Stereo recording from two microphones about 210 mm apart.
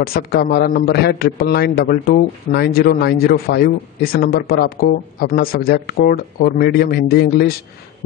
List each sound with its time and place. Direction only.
0.0 s a man's voice: 45° left (ahead or behind)